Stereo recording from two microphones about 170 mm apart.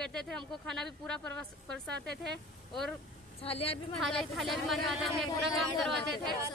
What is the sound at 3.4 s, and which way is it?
Speech, 35° left (ahead or behind).